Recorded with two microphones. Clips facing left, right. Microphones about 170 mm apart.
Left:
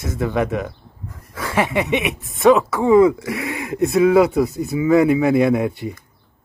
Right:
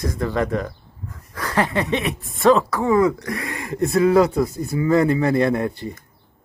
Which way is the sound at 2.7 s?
15° left (ahead or behind).